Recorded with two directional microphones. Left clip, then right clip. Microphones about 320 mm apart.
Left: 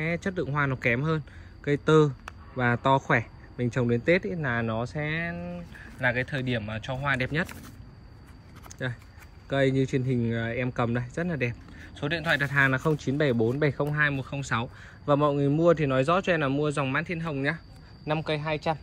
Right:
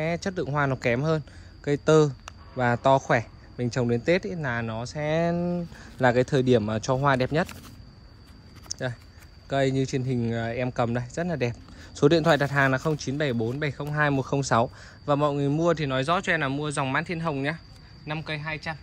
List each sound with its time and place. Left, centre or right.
0.0 s speech: centre
5.3 s speech: left
6.0 s speech: centre
8.6 s a sound: centre
9.5 s speech: centre
13.9 s speech: centre